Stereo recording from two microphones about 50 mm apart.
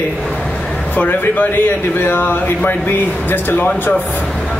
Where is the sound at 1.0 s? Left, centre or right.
Left.